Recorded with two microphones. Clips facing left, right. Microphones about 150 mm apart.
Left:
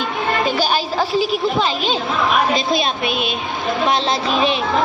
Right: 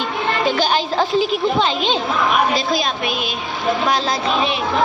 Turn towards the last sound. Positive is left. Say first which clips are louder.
# left 1 dB
turn(degrees=25)  # may be behind; listen again after turning